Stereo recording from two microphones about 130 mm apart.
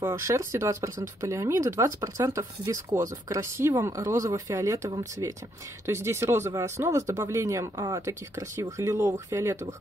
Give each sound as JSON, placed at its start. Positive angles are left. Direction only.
{"t": 0.0, "sound": "speech", "side_deg": -20}